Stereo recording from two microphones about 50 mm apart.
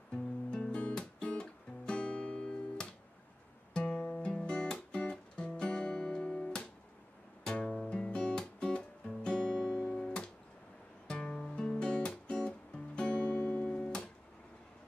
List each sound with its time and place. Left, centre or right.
0.1 s music: centre